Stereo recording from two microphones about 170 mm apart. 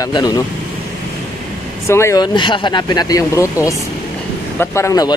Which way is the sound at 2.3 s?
30° left (ahead or behind).